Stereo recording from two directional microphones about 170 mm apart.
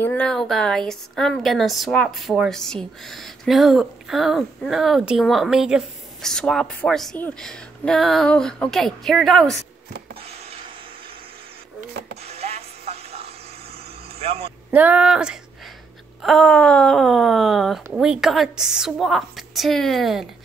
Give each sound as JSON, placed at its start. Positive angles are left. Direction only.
{"t": 0.0, "sound": "a woman's voice", "side_deg": 10}
{"t": 12.3, "sound": "music", "side_deg": -40}
{"t": 14.2, "sound": "speech", "side_deg": -35}
{"t": 14.7, "sound": "a woman's voice", "side_deg": -10}